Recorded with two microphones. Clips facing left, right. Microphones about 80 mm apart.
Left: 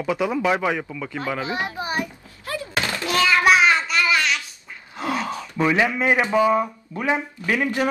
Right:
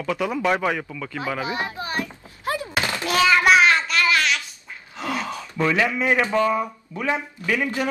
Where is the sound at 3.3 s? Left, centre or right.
Centre.